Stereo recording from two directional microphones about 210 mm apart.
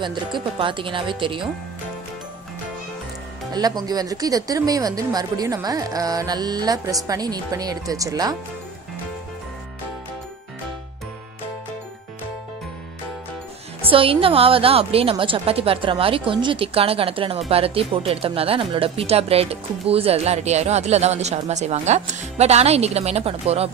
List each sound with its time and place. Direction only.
0.0 s a woman's voice: 20° right (ahead or behind)
3.8 s speech: 15° right (ahead or behind)
13.8 s a woman's voice: 25° right (ahead or behind)